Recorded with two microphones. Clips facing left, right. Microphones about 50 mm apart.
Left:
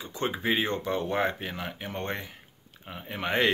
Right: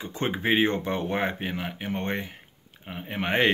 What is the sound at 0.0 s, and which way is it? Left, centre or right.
Speech, right.